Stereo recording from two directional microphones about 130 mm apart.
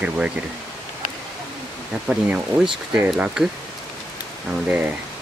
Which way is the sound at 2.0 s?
10° right (ahead or behind).